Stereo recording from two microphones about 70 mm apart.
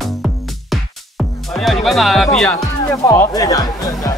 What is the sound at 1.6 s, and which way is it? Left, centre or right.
Speech, centre.